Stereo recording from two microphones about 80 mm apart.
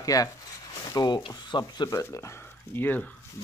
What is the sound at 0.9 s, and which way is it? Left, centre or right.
Speech, left.